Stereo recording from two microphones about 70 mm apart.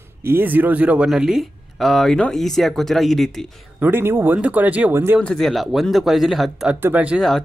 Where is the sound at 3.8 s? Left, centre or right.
Right.